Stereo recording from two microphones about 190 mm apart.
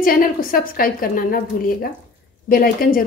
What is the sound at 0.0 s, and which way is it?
A woman's voice, 50° left (ahead or behind).